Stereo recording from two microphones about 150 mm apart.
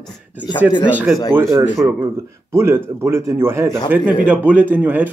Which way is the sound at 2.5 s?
15° right (ahead or behind).